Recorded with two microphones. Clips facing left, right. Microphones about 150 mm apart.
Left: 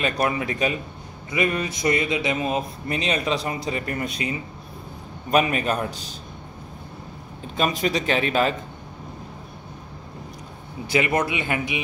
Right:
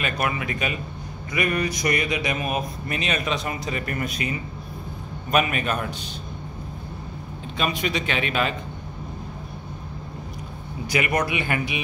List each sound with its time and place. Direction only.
0.0 s speech: 30° left (ahead or behind)
7.5 s speech: 40° left (ahead or behind)
10.9 s speech: 25° left (ahead or behind)